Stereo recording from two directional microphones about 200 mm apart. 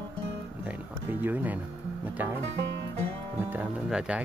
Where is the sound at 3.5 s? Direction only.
5° right (ahead or behind).